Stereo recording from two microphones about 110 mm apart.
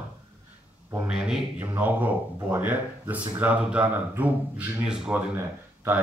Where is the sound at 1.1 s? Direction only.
5° right (ahead or behind).